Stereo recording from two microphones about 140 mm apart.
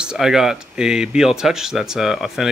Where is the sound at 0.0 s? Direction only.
5° right (ahead or behind).